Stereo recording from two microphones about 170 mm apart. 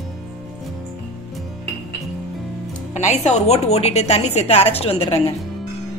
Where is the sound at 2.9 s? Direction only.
40° left (ahead or behind).